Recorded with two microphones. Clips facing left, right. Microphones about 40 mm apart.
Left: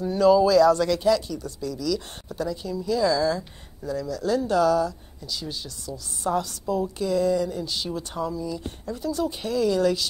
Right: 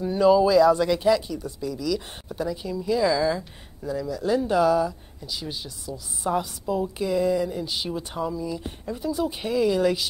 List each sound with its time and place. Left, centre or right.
0.0 s speech: centre